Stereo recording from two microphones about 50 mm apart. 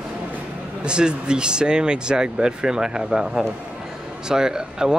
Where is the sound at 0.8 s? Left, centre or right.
Centre.